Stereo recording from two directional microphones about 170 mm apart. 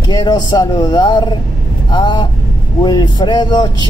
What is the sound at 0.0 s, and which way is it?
A man's voice, 25° left (ahead or behind).